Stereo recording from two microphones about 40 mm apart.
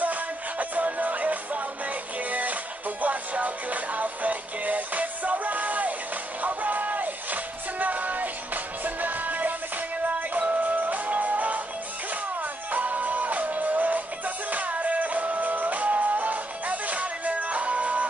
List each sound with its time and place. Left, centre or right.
0.0 s music: right